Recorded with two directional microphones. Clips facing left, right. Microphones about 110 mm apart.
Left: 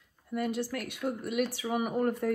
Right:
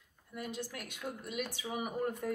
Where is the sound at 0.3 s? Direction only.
55° left (ahead or behind).